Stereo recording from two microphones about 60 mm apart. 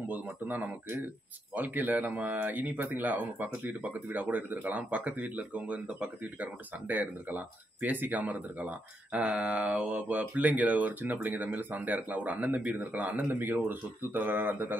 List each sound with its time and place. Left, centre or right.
0.1 s speech: right